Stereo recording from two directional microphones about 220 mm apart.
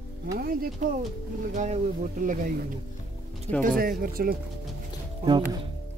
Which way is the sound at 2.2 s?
40° right (ahead or behind).